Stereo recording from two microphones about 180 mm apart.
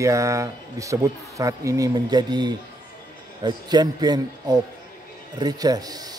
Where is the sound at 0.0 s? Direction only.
15° right (ahead or behind).